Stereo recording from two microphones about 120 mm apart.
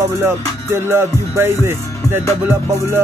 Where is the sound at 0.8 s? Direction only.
20° right (ahead or behind).